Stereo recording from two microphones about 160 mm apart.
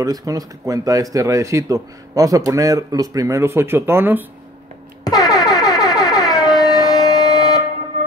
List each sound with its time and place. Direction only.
0.0 s speech: 20° right (ahead or behind)
5.3 s music: 25° left (ahead or behind)
6.6 s a sound: 25° left (ahead or behind)